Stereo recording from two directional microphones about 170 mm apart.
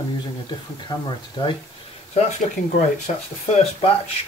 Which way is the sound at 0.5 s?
25° left (ahead or behind).